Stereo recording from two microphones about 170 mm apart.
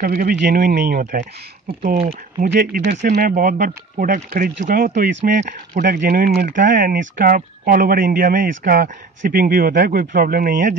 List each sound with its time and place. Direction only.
0.0 s speech: 55° right (ahead or behind)
2.0 s speech: 40° right (ahead or behind)
2.5 s speech: 65° right (ahead or behind)